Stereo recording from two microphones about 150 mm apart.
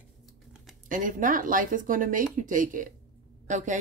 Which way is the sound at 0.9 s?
60° right (ahead or behind).